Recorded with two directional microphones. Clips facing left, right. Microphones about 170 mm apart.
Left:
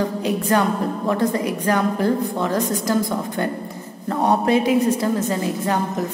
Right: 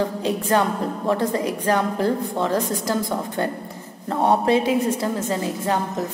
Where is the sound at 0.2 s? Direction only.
30° right (ahead or behind).